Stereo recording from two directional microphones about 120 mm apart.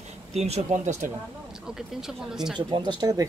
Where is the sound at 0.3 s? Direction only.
65° right (ahead or behind); by 1.1 s 85° right.